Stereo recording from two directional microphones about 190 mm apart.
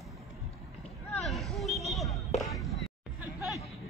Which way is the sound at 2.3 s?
35° left (ahead or behind).